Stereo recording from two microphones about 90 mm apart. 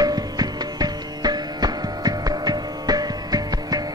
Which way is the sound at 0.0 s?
45° right (ahead or behind).